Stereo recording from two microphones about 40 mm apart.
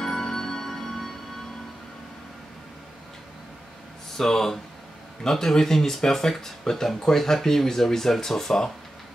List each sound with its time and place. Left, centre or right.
0.0 s music: centre
4.2 s speech: centre